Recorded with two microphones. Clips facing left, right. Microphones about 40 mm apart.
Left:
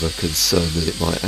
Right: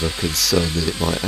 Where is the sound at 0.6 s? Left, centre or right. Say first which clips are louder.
Even; centre.